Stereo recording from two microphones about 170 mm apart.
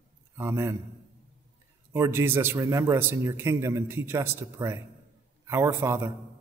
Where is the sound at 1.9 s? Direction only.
15° right (ahead or behind).